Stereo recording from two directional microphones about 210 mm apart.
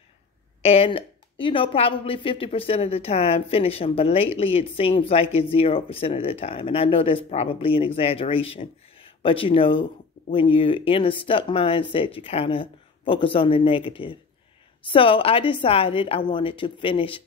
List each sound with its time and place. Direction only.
0.6 s a woman's voice: 30° left (ahead or behind)